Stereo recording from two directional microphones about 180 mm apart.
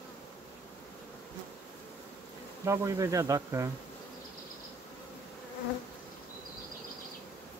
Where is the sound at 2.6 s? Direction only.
15° right (ahead or behind).